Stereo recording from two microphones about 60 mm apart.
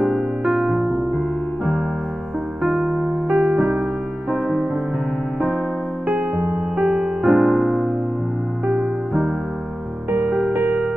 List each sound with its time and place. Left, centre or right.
0.0 s music: centre
2.6 s electric piano: centre
4.3 s music: centre
6.8 s music: centre
10.1 s music: right